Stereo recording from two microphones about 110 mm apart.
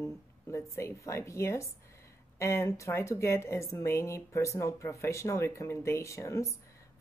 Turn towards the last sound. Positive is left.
turn(degrees=25)  # may be behind; listen again after turning